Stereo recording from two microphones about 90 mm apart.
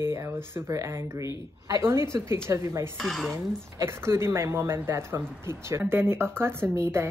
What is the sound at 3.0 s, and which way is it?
Stir, 5° left (ahead or behind).